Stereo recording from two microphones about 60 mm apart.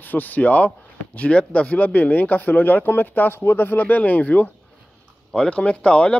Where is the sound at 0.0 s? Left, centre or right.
Left.